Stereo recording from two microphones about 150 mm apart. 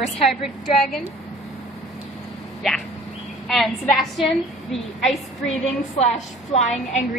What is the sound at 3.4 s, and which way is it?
A woman's voice, centre (ahead or behind).